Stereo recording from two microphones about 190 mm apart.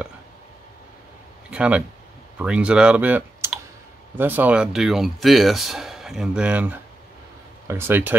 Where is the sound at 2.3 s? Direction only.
5° right (ahead or behind).